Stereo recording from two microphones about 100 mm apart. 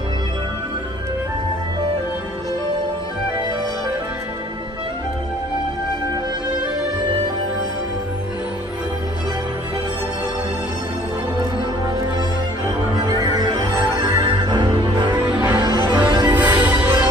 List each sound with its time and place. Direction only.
13.0 s music: 45° right (ahead or behind)
15.3 s music: 15° right (ahead or behind)
15.9 s music: 50° right (ahead or behind)
16.3 s music: 15° right (ahead or behind)